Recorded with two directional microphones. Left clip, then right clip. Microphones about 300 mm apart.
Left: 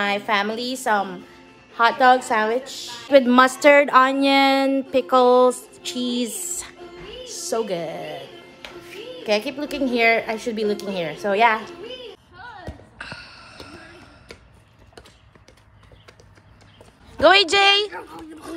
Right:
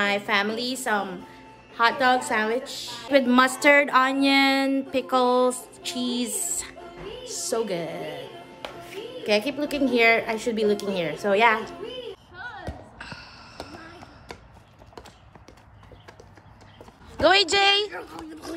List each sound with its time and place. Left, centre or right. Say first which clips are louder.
0.3 s a woman's voice: left 2 dB; centre
6.0 s music: left 3 dB; centre
7.5 s a woman's voice: left 3 dB; centre
9.2 s a woman's voice: left 1 dB; centre
12.6 s a sound: left 2 dB; centre
17.2 s a woman's voice: left 4 dB; centre